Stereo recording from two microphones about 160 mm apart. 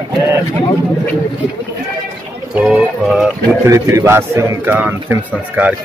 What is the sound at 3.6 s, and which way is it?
A man's voice, 20° right (ahead or behind).